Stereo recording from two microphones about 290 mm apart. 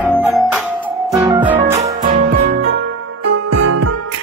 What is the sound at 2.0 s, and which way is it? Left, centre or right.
Music, right.